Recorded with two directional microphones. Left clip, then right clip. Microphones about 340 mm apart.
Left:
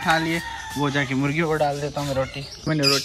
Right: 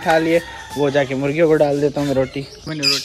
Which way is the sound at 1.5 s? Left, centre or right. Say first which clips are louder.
Right 8 dB; left.